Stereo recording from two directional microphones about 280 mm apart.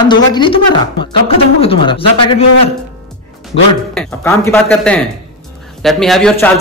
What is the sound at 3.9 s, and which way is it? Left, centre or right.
Speech, centre.